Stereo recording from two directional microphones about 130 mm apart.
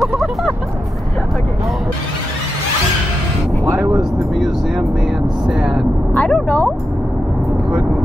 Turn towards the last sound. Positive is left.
turn(degrees=10)  # may be behind; listen again after turning